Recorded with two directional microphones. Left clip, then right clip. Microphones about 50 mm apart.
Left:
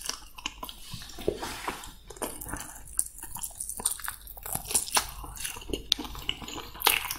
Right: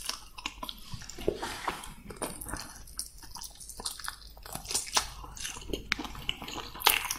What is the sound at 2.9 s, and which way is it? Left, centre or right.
Biting, left.